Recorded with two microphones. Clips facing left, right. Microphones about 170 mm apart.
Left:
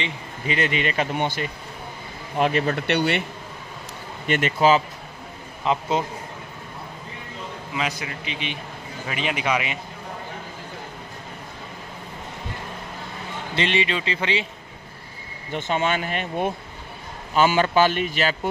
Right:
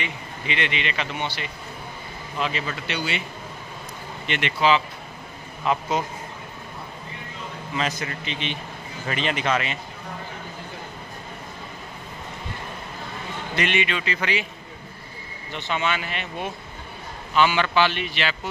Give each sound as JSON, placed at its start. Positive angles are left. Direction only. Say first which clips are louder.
{"t": 0.5, "sound": "a man's voice", "louder": "left 4 dB", "side_deg": 40}
{"t": 4.3, "sound": "a man's voice", "louder": "left 3 dB", "side_deg": 45}
{"t": 5.6, "sound": "a man's voice", "louder": "left 1 dB", "side_deg": 25}
{"t": 8.0, "sound": "a man's voice", "louder": "right 1 dB", "side_deg": 10}
{"t": 13.6, "sound": "a man's voice", "louder": "left 1 dB", "side_deg": 30}
{"t": 15.5, "sound": "a man's voice", "louder": "left 3 dB", "side_deg": 45}